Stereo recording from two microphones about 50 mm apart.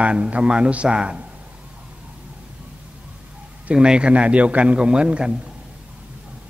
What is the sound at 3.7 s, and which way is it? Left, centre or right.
A man's voice, centre.